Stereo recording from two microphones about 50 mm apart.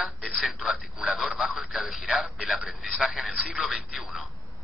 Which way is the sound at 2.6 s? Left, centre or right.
Centre.